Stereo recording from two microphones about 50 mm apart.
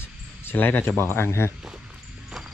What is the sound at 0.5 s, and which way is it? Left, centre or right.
Speech, left.